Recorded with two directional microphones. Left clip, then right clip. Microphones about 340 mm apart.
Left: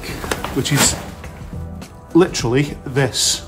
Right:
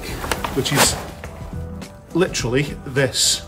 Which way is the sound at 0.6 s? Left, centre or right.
Centre.